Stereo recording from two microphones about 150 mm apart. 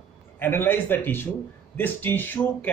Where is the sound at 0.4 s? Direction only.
15° left (ahead or behind).